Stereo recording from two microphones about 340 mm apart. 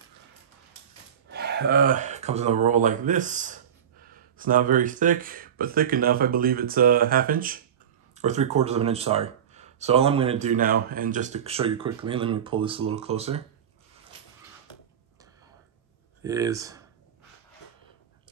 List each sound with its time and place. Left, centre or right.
1.3 s speech: right
16.3 s speech: centre